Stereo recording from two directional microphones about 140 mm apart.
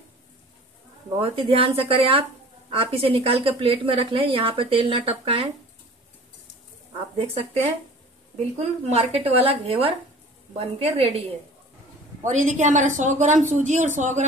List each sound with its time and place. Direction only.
1.2 s a woman's voice: 40° right (ahead or behind)
7.2 s speech: 45° right (ahead or behind)
12.2 s speech: 60° right (ahead or behind)